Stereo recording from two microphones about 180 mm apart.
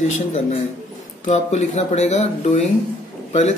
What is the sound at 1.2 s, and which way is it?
A man's voice, 40° left (ahead or behind).